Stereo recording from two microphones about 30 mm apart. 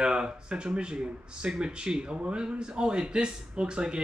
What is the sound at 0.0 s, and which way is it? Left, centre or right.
Speech, right.